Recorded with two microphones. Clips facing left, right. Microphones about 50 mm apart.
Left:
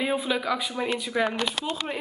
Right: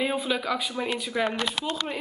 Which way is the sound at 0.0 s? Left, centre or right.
Centre.